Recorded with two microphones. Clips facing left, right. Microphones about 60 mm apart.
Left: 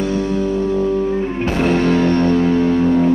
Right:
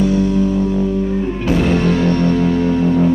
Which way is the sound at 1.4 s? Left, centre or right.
Left.